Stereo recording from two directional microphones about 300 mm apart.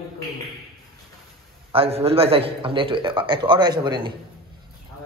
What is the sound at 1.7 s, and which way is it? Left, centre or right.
A man's voice, centre.